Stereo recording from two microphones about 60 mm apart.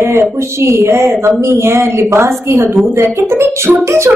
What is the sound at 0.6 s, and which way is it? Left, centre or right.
A woman's voice, right.